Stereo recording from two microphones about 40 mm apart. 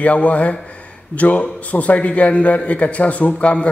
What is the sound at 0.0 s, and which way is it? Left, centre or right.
Mantra, left.